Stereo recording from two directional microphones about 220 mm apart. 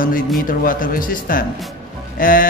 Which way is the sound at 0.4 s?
40° left (ahead or behind).